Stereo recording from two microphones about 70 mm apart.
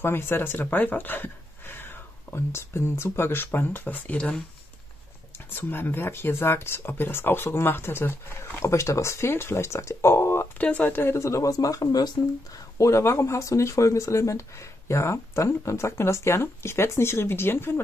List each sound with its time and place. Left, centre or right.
0.0 s speech: left
5.5 s speech: left
10.6 s speech: left
11.5 s speech: left
12.7 s speech: left